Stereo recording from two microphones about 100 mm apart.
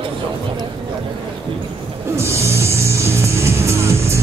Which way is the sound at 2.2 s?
30° right (ahead or behind).